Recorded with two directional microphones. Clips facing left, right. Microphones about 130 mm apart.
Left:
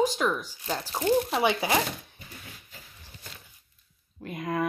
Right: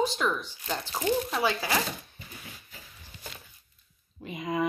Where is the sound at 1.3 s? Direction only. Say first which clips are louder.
Left 3 dB; 20° left (ahead or behind).